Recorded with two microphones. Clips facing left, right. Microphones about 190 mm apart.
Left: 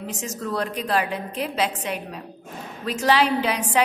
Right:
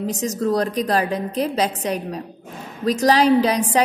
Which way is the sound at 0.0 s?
40° right (ahead or behind).